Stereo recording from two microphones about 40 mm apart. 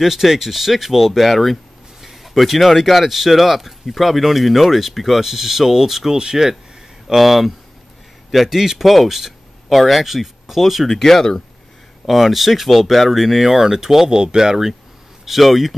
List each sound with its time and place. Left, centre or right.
0.0 s speech: centre
7.2 s speech: centre
12.1 s speech: centre
15.2 s speech: centre